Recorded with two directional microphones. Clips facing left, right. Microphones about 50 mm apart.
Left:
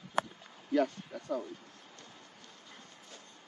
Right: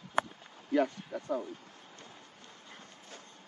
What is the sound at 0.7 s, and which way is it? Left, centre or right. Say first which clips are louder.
Speech: right 1 dB; centre.